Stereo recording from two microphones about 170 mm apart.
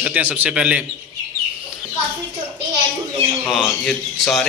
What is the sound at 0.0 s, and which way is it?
Speech, 10° right (ahead or behind).